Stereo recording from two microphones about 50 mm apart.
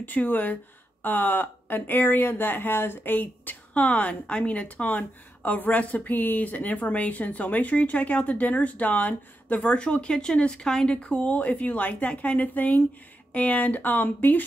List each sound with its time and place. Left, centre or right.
0.0 s speech: left; by 11.0 s centre
11.0 s a woman's voice: left